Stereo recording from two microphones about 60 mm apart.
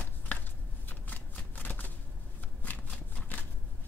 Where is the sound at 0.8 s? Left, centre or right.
Left.